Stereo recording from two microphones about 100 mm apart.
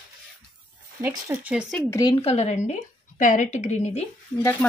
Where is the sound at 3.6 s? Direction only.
90° left.